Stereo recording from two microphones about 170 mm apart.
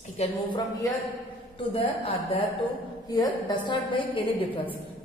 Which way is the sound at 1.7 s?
35° left (ahead or behind).